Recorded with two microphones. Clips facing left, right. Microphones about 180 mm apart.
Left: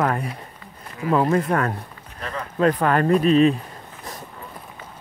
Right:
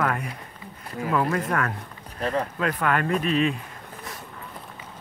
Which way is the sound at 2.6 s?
35° left (ahead or behind).